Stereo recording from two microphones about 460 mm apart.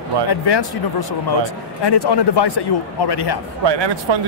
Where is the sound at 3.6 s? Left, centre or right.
Right.